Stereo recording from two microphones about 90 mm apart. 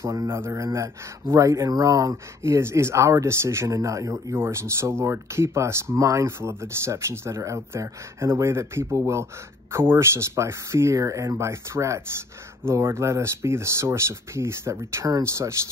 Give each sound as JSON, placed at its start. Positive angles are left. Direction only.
{"t": 0.0, "sound": "speech", "side_deg": -40}